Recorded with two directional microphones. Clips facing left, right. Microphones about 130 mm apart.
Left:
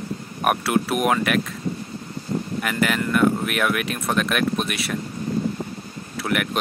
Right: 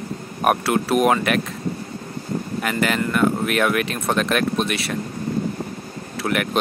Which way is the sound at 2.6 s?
5° left (ahead or behind).